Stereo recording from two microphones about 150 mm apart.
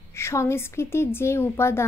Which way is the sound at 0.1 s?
20° left (ahead or behind).